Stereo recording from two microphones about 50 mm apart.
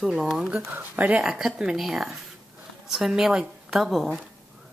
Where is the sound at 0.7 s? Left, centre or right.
Right.